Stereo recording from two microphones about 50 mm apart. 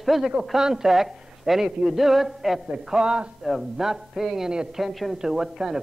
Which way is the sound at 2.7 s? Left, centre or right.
Centre.